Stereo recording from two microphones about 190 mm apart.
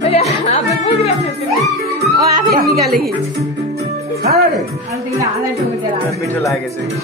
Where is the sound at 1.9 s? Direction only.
55° right (ahead or behind).